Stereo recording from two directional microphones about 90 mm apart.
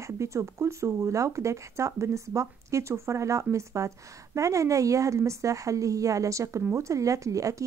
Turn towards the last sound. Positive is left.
turn(degrees=-35)  # may be behind; listen again after turning